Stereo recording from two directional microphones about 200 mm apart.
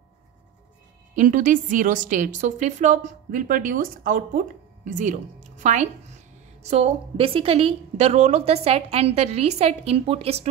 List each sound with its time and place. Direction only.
1.1 s a woman's voice: 40° right (ahead or behind)